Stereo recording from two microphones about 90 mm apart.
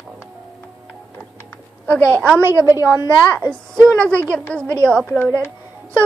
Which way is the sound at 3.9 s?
15° left (ahead or behind).